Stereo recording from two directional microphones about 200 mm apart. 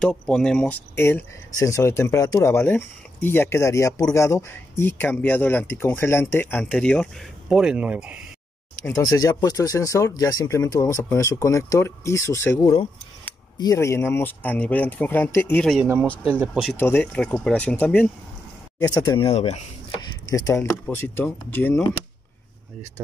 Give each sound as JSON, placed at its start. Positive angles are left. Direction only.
{"t": 0.0, "sound": "speech", "side_deg": 5}
{"t": 8.8, "sound": "speech", "side_deg": 15}
{"t": 16.7, "sound": "speech", "side_deg": 10}
{"t": 18.9, "sound": "speech", "side_deg": 25}
{"t": 20.2, "sound": "speech", "side_deg": 15}